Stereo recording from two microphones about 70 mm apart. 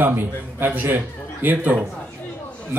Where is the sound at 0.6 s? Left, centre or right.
Right.